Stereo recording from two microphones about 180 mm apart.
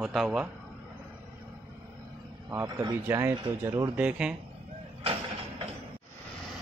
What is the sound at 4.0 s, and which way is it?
Speech, 5° right (ahead or behind).